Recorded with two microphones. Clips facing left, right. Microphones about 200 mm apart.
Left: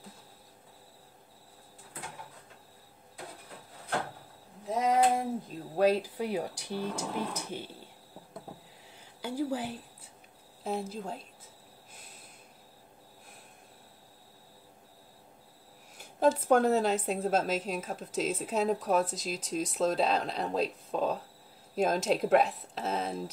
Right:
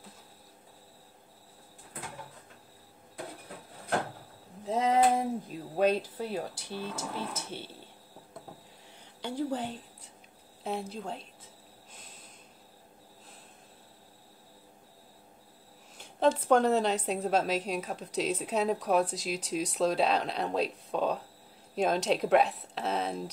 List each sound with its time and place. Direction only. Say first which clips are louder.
4.6 s a sound: right 1 dB; 25° right (ahead or behind)
5.8 s speech: left 1 dB; 5° left (ahead or behind)
9.2 s a woman's voice: even; 10° left (ahead or behind)
16.0 s a woman's voice: even; 5° left (ahead or behind)